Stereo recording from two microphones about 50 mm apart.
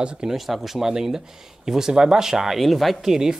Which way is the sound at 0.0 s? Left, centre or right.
Right.